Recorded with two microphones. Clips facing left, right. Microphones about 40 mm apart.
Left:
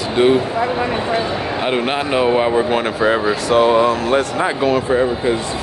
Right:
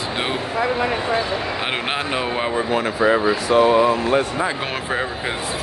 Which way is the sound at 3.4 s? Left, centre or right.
Left.